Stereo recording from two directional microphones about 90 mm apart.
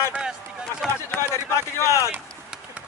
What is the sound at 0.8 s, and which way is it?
Speech, centre (ahead or behind).